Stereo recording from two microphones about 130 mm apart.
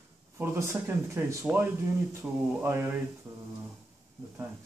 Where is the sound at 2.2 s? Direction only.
10° right (ahead or behind).